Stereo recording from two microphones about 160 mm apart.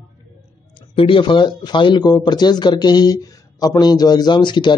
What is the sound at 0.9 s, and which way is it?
Speech, 35° left (ahead or behind).